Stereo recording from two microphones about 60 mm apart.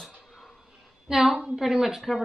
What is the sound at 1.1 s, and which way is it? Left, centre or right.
A woman's voice, centre.